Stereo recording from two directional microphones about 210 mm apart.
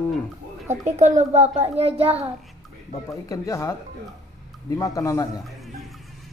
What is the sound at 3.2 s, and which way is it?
A man's voice, 15° left (ahead or behind).